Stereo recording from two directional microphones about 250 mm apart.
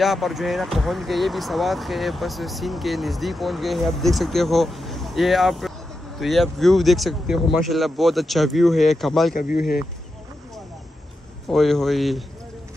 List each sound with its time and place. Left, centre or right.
0.0 s speech: centre
9.3 s speech: left
11.4 s speech: centre